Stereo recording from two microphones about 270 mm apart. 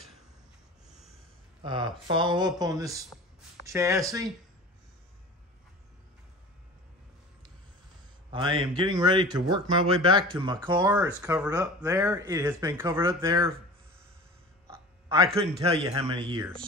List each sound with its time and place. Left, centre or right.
1.6 s speech: centre
8.3 s speech: centre
15.3 s speech: right